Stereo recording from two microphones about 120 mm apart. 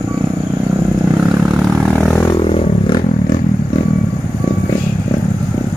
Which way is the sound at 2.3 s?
50° left (ahead or behind).